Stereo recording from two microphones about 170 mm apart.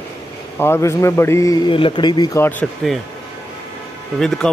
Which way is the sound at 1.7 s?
30° left (ahead or behind).